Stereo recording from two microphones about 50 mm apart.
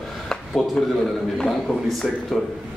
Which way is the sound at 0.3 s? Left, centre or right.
Centre.